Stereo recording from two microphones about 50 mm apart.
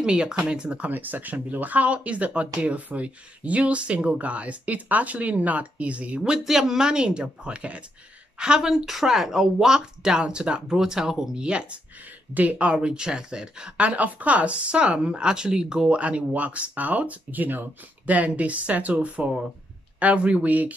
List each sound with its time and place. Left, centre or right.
0.0 s speech: centre
0.9 s speech: right
6.2 s speech: centre
8.4 s speech: centre
12.4 s speech: right
12.6 s speech: centre